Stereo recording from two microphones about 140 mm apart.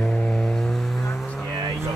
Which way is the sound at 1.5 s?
25° right (ahead or behind).